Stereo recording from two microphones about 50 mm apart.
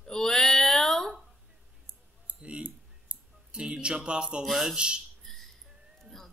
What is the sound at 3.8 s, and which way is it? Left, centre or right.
Speech, centre.